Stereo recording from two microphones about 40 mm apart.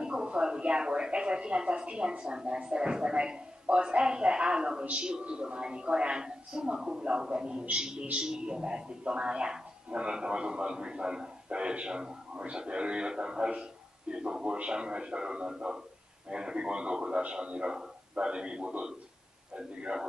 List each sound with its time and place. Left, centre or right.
0.0 s speech: right